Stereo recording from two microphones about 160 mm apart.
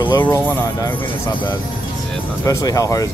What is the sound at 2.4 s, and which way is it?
Speech, 20° left (ahead or behind).